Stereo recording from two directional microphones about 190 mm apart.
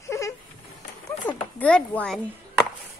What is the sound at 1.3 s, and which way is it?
Speech, 10° left (ahead or behind).